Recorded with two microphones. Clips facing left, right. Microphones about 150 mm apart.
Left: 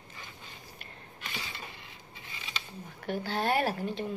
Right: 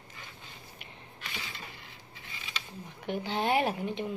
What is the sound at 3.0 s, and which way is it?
A woman's voice, 15° right (ahead or behind).